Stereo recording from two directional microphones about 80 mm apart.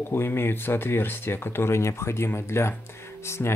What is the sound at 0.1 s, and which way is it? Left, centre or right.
Speech, left.